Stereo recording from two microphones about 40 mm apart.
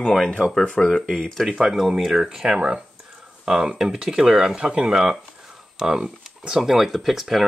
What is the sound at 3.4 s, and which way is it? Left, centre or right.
Speech, centre.